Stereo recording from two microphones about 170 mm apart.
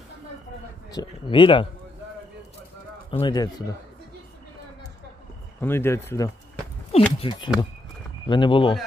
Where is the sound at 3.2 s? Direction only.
25° left (ahead or behind).